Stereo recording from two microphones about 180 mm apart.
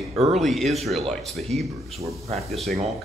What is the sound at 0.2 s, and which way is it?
Speech, centre (ahead or behind).